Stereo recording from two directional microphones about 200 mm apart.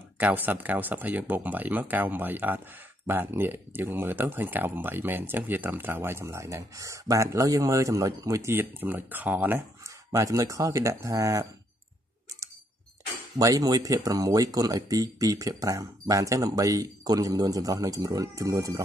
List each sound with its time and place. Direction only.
0.2 s speech: 10° right (ahead or behind)
13.4 s speech: 15° right (ahead or behind)